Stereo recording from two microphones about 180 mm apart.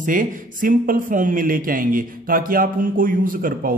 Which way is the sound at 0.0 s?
50° right (ahead or behind).